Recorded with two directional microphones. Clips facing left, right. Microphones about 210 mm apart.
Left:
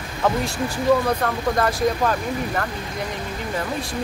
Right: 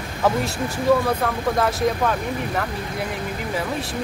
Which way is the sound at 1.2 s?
Centre (ahead or behind).